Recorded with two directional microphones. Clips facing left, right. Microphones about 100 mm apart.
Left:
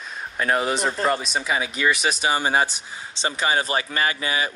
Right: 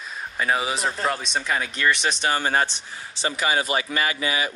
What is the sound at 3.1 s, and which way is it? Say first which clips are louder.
Speech: left 1 dB; 30° left (ahead or behind).